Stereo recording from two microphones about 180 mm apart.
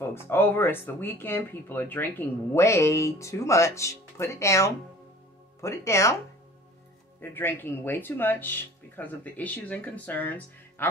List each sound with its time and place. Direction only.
0.0 s speech: 15° left (ahead or behind)
7.2 s speech: 10° left (ahead or behind)